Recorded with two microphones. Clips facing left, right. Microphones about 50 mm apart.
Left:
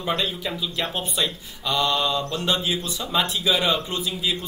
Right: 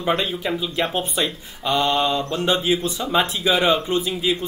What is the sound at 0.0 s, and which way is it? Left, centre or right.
Speech, right.